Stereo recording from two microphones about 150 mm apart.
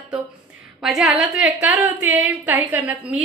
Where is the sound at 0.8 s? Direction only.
Centre (ahead or behind).